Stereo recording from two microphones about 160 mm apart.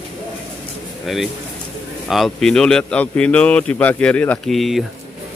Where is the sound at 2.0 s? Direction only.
Centre (ahead or behind).